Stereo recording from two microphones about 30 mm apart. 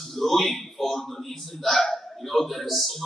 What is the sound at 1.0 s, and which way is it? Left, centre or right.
Hiccup, centre.